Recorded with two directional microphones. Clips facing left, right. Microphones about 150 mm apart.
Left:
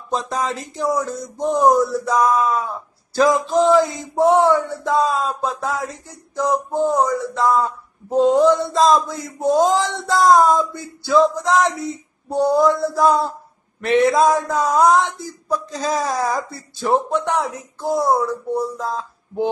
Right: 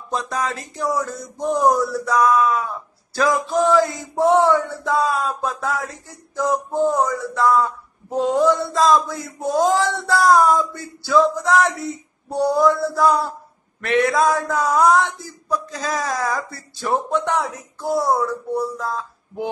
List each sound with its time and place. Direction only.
0.1 s male singing: 25° left (ahead or behind)
6.3 s speech: 15° left (ahead or behind)
8.3 s male singing: 20° left (ahead or behind)
16.8 s male singing: 15° left (ahead or behind)